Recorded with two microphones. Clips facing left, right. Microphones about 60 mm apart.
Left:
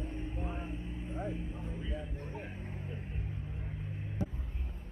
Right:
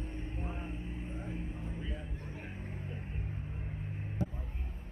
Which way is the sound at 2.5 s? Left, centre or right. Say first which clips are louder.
Even; centre.